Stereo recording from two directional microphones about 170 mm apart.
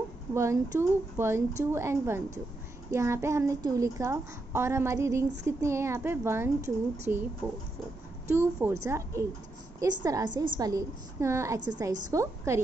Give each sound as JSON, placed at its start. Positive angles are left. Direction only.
{"t": 0.3, "sound": "a child's voice", "side_deg": -15}
{"t": 8.3, "sound": "a child's voice", "side_deg": -15}